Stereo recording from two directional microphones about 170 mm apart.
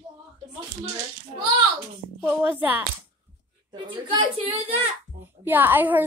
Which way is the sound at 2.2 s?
10° right (ahead or behind).